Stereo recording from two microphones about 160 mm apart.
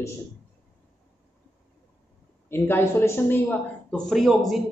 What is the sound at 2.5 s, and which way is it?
Speech, 15° left (ahead or behind).